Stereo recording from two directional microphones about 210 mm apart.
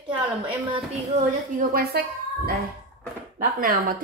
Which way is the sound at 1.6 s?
45° right (ahead or behind).